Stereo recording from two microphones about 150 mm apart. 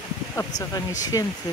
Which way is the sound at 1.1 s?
25° left (ahead or behind).